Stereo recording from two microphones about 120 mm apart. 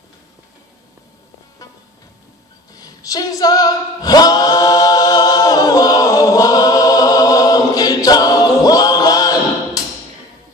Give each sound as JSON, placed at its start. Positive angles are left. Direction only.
{"t": 2.7, "sound": "singing", "side_deg": 30}